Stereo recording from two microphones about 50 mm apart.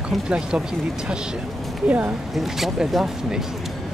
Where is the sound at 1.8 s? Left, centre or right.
Right.